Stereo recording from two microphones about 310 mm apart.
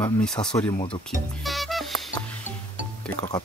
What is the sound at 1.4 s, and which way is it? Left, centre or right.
Music, centre.